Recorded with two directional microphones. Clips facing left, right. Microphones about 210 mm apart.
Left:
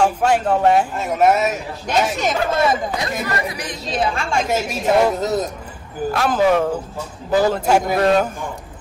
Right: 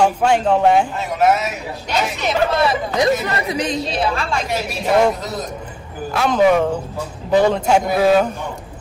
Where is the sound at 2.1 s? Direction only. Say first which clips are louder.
Right 1 dB; 45° left (ahead or behind).